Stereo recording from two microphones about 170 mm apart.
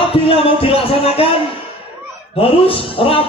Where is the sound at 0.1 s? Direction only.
30° left (ahead or behind).